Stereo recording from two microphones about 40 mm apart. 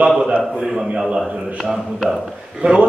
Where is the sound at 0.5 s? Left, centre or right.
Centre.